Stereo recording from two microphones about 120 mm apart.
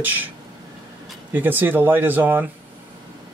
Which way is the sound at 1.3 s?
15° right (ahead or behind).